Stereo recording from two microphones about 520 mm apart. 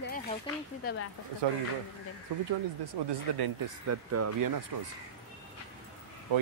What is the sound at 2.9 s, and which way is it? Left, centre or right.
Speech, right.